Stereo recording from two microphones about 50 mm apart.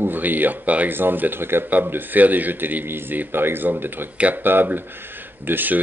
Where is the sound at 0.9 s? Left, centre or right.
Right.